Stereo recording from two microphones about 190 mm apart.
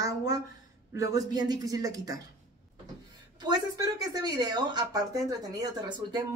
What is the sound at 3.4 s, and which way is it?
Speech, 20° right (ahead or behind).